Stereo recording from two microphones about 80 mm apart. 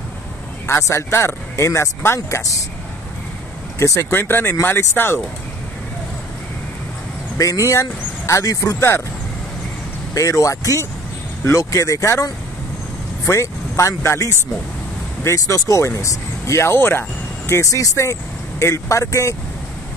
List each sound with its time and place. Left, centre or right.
0.7 s speech: left
3.8 s speech: left
4.1 s speech: left
7.3 s speech: left
10.1 s speech: left